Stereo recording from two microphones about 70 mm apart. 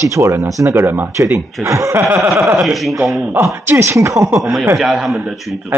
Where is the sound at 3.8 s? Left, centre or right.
Right.